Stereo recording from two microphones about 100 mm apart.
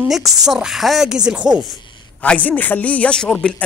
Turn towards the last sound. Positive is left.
turn(degrees=10)  # may be behind; listen again after turning